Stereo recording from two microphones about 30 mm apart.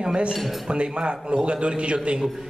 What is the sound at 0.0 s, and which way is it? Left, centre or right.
Speech, right.